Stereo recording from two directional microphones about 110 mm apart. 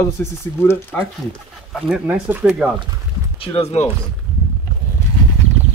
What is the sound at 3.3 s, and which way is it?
Speech, 65° left (ahead or behind).